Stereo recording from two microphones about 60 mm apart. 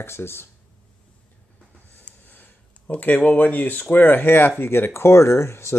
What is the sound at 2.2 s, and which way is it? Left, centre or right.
Speech, left.